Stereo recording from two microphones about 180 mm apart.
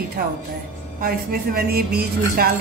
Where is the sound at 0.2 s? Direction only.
50° right (ahead or behind).